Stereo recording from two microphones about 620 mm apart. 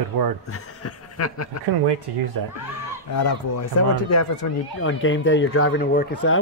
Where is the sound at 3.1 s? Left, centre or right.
Left.